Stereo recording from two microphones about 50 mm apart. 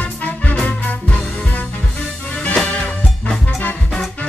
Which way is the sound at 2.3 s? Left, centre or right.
Left.